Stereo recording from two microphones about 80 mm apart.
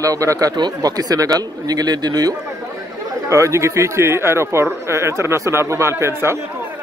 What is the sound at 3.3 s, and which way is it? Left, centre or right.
Speech, right.